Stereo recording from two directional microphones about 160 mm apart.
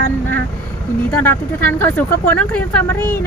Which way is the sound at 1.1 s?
10° left (ahead or behind).